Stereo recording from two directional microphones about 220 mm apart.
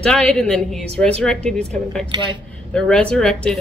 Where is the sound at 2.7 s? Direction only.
5° left (ahead or behind).